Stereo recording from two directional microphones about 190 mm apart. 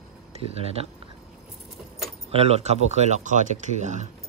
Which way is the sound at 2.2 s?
35° right (ahead or behind).